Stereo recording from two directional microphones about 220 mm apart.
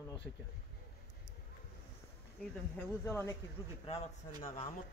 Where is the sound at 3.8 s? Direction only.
25° left (ahead or behind).